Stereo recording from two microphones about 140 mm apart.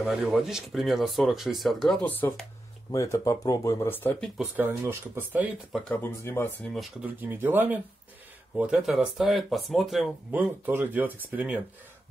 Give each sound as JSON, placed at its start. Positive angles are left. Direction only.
{"t": 0.0, "sound": "speech", "side_deg": -5}
{"t": 4.4, "sound": "speech", "side_deg": -15}
{"t": 5.7, "sound": "speech", "side_deg": 0}
{"t": 6.0, "sound": "speech", "side_deg": 15}
{"t": 6.7, "sound": "speech", "side_deg": 0}
{"t": 7.2, "sound": "speech", "side_deg": -15}
{"t": 10.3, "sound": "speech", "side_deg": -15}